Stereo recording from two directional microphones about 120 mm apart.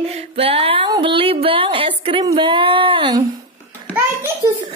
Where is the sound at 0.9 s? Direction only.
45° right (ahead or behind).